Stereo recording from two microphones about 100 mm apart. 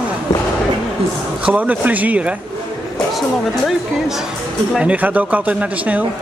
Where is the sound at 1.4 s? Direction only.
15° right (ahead or behind).